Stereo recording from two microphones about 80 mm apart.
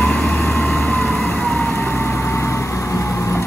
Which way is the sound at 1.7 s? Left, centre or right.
Left.